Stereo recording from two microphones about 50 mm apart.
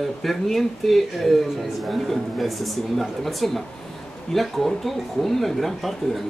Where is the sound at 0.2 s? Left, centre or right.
Centre.